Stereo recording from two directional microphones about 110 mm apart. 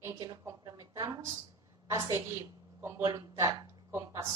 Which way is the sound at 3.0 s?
35° right (ahead or behind).